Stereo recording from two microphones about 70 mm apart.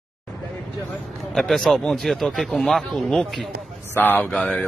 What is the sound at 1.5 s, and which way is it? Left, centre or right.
Speech, centre.